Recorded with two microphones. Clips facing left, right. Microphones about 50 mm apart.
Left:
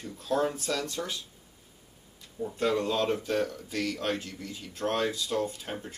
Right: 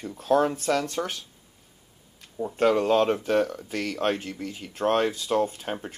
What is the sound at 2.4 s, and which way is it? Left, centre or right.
Speech, right.